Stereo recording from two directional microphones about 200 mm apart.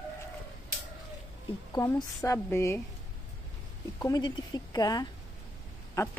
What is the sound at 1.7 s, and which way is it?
A woman's voice, 15° left (ahead or behind).